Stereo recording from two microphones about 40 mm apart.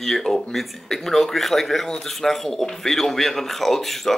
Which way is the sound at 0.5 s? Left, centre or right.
Centre.